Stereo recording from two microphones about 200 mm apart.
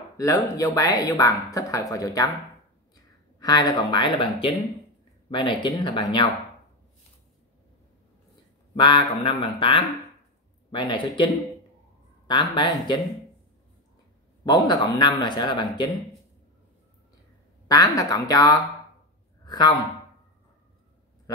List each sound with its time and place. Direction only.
0.2 s speech: 15° left (ahead or behind)
3.3 s speech: 20° left (ahead or behind)
8.7 s speech: 25° left (ahead or behind)
12.3 s speech: 25° left (ahead or behind)
14.4 s speech: 20° left (ahead or behind)
17.6 s a man's voice: 15° left (ahead or behind)